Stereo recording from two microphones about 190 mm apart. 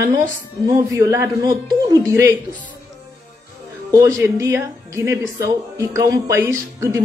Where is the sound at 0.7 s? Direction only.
15° right (ahead or behind).